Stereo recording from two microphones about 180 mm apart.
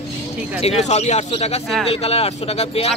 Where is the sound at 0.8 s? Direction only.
40° left (ahead or behind).